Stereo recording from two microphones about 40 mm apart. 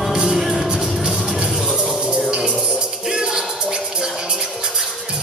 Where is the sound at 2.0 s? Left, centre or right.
Centre.